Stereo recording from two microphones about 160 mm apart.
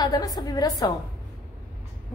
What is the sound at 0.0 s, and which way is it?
Speech, 25° left (ahead or behind).